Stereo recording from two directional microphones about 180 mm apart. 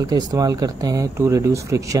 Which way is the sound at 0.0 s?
20° right (ahead or behind).